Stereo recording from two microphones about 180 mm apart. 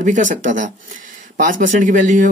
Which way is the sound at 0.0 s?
45° right (ahead or behind).